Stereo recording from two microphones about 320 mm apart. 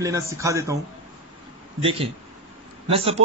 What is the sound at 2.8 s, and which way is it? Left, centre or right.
Speech, centre.